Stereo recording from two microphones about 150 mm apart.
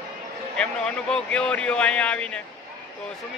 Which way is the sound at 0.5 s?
5° left (ahead or behind).